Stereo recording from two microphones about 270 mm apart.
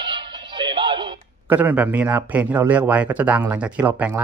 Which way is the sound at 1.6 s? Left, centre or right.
Centre.